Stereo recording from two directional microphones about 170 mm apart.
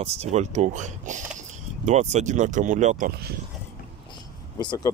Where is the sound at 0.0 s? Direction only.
40° right (ahead or behind).